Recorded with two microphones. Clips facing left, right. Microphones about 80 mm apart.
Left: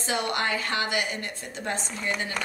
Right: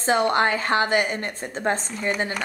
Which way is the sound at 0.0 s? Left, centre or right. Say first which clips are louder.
Right 8 dB; right.